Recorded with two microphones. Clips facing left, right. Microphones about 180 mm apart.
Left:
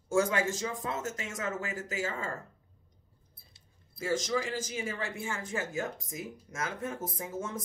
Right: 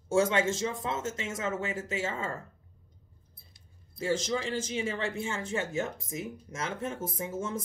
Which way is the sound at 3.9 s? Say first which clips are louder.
Right 1 dB; 25° right (ahead or behind).